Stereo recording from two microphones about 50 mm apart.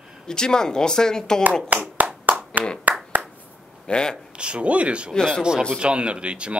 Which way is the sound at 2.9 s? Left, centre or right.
Right.